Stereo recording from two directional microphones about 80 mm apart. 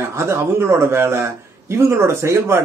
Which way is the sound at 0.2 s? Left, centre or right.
Right.